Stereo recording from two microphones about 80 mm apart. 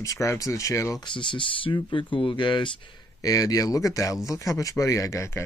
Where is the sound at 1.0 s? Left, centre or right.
Left.